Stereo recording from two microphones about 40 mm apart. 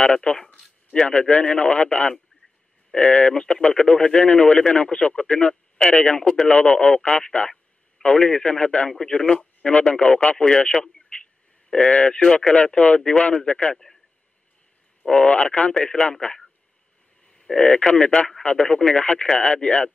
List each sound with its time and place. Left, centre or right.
0.0 s speech: left
10.3 s speech: centre
10.8 s a sound: left
11.7 s speech: left
15.0 s speech: left
17.2 s speech: centre